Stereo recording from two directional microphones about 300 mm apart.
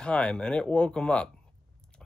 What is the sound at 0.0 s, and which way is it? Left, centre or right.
Speech, centre.